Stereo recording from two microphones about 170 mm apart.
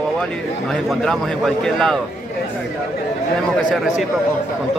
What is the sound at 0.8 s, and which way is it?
A man's voice, centre (ahead or behind).